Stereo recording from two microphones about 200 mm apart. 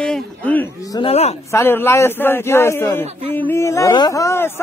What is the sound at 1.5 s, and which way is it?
A man's voice, 10° left (ahead or behind).